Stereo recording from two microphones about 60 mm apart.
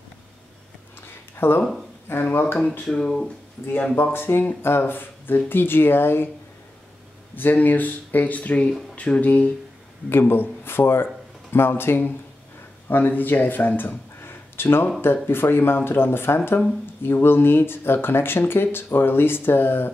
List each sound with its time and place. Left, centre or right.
1.3 s a sound: left
1.6 s speech: centre
2.0 s speech: left
2.9 s speech: centre
3.9 s speech: left
7.3 s speech: left
10.0 s speech: left